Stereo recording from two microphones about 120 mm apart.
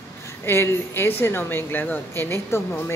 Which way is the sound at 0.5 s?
20° left (ahead or behind).